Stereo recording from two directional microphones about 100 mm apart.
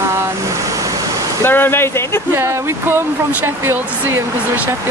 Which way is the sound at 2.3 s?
25° right (ahead or behind).